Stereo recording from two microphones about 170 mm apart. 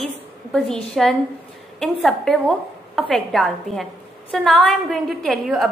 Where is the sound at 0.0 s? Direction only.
5° left (ahead or behind).